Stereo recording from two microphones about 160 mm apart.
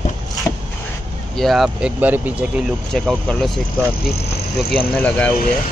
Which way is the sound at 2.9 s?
5° left (ahead or behind).